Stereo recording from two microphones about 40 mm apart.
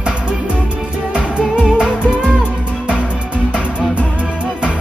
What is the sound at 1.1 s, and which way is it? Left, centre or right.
Music, right.